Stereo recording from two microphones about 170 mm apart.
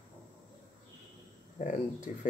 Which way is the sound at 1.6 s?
45° left (ahead or behind).